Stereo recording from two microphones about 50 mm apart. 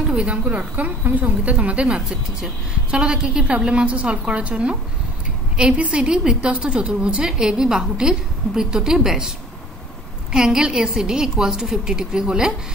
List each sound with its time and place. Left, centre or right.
0.1 s a woman's voice: right
5.8 s a woman's voice: right
10.3 s a woman's voice: centre